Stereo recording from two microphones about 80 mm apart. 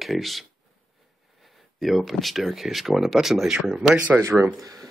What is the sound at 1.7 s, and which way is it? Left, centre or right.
Speech, centre.